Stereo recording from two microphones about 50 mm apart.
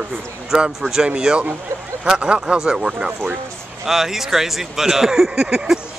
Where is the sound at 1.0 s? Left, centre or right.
Right.